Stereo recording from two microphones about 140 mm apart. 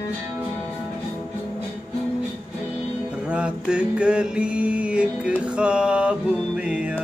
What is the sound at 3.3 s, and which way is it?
Music, 5° right (ahead or behind).